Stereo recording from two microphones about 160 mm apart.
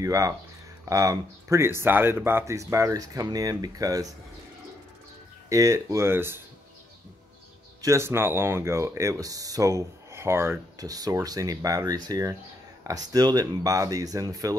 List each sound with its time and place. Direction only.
0.0 s speech: 20° right (ahead or behind)
5.5 s speech: 20° right (ahead or behind)
7.8 s speech: 15° right (ahead or behind)